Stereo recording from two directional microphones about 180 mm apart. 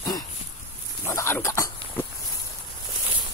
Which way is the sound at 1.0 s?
15° left (ahead or behind).